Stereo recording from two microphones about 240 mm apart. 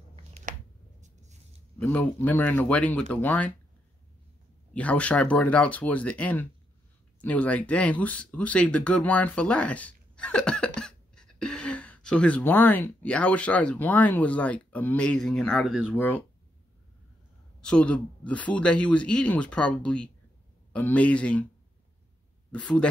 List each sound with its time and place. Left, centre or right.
0.5 s a sound: right
1.8 s speech: centre
4.7 s speech: centre
17.6 s speech: centre
22.5 s speech: centre